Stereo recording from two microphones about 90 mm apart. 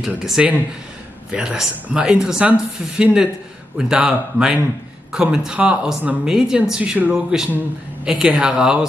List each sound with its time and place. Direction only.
0.2 s speech: 5° right (ahead or behind)